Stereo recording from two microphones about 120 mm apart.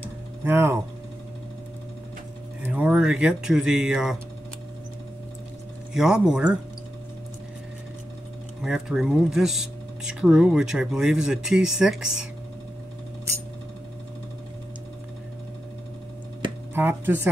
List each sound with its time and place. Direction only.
0.4 s speech: 20° right (ahead or behind)
2.6 s speech: 10° right (ahead or behind)
5.9 s speech: 5° right (ahead or behind)
8.6 s speech: 5° right (ahead or behind)
16.7 s speech: 15° right (ahead or behind)